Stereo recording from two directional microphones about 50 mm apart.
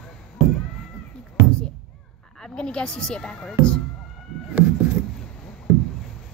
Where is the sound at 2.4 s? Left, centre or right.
Centre.